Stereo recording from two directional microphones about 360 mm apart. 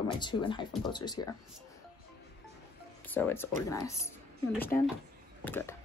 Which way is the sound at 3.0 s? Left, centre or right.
Centre.